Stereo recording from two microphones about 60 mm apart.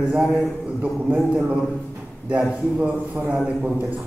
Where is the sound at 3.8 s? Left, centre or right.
Right.